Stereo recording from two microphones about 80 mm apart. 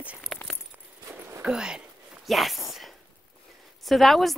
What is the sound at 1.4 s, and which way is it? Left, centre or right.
Speech, centre.